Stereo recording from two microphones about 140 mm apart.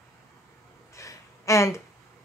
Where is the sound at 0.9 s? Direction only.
20° left (ahead or behind).